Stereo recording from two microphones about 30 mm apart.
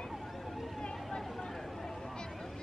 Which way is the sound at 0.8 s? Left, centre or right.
Left.